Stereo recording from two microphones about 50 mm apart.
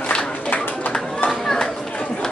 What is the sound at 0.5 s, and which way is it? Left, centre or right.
Bird, left.